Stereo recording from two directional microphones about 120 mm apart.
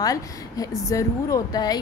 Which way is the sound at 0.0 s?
30° left (ahead or behind).